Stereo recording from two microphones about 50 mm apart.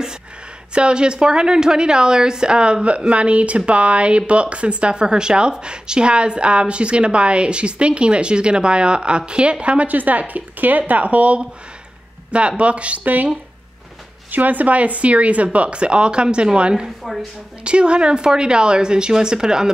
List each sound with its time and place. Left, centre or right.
0.7 s a woman's voice: centre; by 13.3 s right
14.3 s a woman's voice: right; by 16.8 s centre
17.0 s a woman's voice: centre
17.6 s a woman's voice: right